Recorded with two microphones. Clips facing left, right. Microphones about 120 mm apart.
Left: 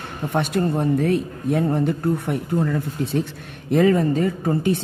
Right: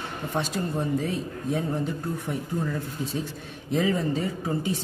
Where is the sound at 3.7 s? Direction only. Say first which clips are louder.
Left 8 dB; 60° left (ahead or behind).